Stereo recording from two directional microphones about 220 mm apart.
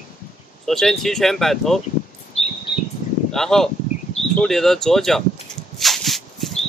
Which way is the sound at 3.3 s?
Centre (ahead or behind).